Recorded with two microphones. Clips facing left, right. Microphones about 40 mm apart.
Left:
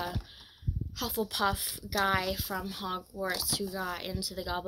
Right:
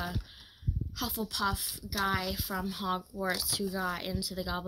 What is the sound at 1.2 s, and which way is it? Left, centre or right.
A woman's voice, left.